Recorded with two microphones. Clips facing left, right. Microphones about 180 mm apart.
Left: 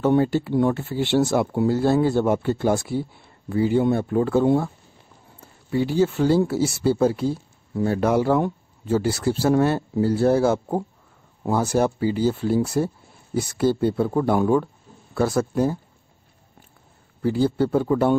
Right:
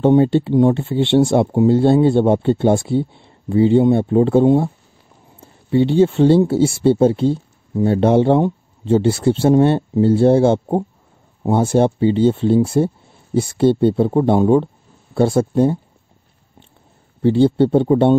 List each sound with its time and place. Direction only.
0.0 s speech: 25° right (ahead or behind)
17.2 s speech: 25° right (ahead or behind)